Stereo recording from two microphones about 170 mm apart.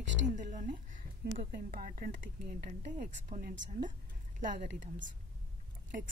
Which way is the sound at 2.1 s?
65° right (ahead or behind).